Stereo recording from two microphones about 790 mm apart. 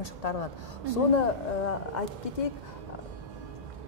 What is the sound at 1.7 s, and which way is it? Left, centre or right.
Speech, left.